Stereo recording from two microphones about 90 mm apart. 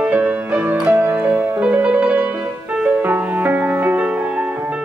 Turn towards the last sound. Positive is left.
turn(degrees=-20)  # may be behind; listen again after turning